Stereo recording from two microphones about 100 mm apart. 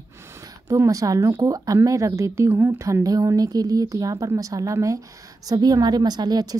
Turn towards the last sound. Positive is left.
turn(degrees=-40)  # may be behind; listen again after turning